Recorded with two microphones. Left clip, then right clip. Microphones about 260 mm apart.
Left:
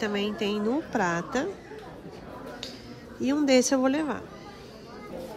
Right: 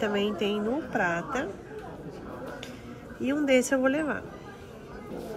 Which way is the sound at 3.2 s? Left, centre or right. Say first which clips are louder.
Left 2 dB; centre.